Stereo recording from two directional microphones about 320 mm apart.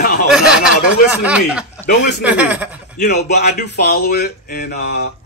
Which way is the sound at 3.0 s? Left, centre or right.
Left.